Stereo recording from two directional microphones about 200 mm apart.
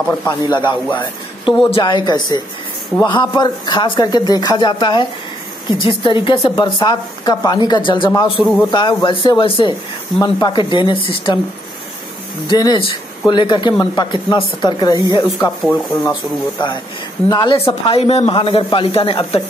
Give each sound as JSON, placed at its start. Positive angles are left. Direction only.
{"t": 0.2, "sound": "a woman's voice", "side_deg": 20}
{"t": 12.4, "sound": "a woman's voice", "side_deg": 20}
{"t": 17.3, "sound": "a woman's voice", "side_deg": 20}